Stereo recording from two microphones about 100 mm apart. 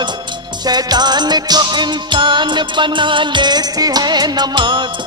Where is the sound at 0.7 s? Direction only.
45° right (ahead or behind).